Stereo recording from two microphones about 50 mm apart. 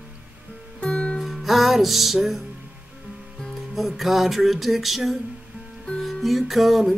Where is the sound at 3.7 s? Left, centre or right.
Centre.